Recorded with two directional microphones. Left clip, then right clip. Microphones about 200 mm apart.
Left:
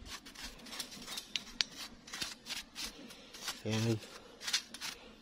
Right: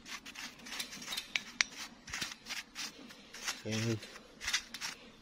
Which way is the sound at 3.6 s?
15° left (ahead or behind).